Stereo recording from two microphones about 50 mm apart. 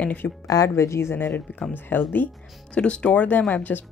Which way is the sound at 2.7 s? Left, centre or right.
Left.